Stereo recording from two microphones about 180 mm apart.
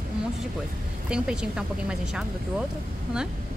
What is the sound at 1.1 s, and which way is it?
Speech, 5° right (ahead or behind).